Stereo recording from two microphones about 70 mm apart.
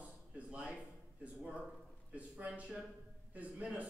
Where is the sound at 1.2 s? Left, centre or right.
Centre.